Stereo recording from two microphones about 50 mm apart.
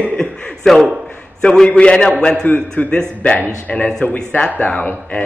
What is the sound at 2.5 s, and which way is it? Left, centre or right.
Speech, left.